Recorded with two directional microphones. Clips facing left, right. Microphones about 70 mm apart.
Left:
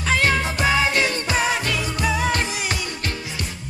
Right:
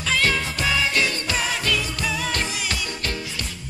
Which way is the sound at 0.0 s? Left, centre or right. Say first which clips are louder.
Left 3 dB; left.